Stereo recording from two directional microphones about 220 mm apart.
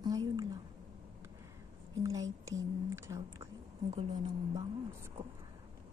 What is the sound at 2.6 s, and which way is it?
A woman's voice, 15° right (ahead or behind).